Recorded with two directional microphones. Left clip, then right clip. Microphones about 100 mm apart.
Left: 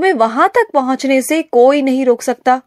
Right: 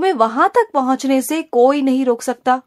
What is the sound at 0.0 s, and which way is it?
Speech, 5° left (ahead or behind).